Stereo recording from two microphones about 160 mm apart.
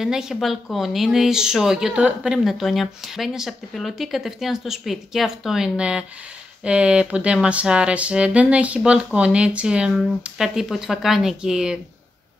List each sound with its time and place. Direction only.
0.0 s speech: 5° right (ahead or behind)